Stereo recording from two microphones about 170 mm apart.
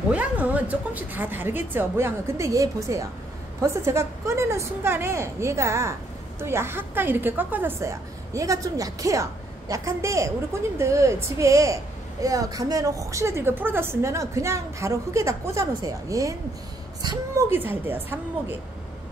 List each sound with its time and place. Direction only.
0.1 s a woman's voice: 10° right (ahead or behind)
17.5 s a woman's voice: 10° right (ahead or behind)